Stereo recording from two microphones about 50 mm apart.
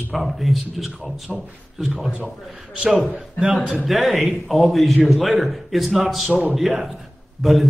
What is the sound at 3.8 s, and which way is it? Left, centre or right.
A man's voice, centre.